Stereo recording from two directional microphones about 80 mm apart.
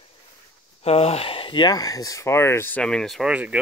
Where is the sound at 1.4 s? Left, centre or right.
Left.